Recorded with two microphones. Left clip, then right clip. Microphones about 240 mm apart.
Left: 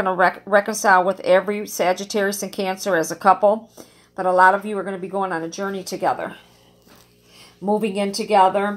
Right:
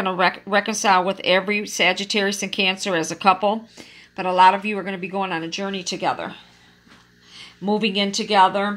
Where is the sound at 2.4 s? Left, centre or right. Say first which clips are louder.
Right 2 dB; right.